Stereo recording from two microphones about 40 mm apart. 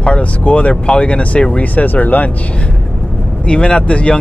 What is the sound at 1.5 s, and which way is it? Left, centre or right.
Speech, left.